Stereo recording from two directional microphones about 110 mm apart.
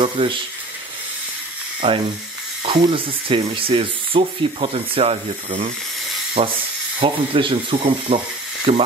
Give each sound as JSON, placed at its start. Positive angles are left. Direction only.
{"t": 0.0, "sound": "speech", "side_deg": -50}
{"t": 1.8, "sound": "speech", "side_deg": -55}